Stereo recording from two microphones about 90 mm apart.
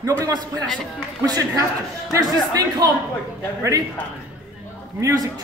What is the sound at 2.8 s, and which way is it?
Speech, 45° right (ahead or behind).